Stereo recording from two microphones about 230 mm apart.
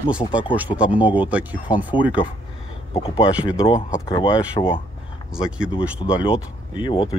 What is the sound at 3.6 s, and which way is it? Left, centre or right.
Speech, left.